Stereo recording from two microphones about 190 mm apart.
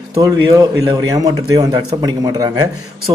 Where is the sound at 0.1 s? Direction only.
20° right (ahead or behind).